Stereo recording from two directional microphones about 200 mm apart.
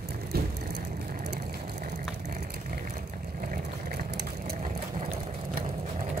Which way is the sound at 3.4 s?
50° right (ahead or behind).